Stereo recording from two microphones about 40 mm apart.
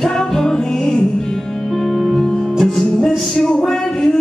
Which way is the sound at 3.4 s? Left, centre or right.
Centre.